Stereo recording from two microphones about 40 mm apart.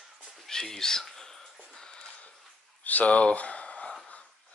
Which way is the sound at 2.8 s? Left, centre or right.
Left.